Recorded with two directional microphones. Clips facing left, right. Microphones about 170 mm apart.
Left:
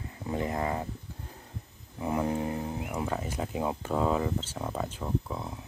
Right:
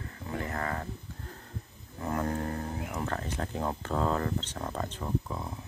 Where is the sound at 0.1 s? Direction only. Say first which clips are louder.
Left 5 dB; 20° left (ahead or behind).